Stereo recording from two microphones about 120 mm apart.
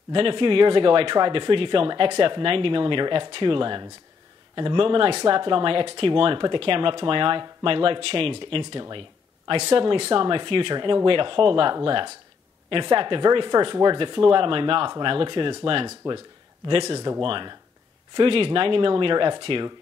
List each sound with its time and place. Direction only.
0.1 s speech: 45° right (ahead or behind)